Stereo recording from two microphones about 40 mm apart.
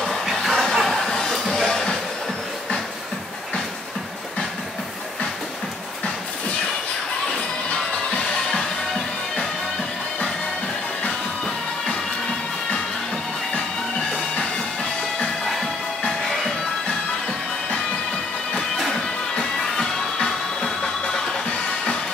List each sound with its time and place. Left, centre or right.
0.3 s music: centre
19.3 s music: left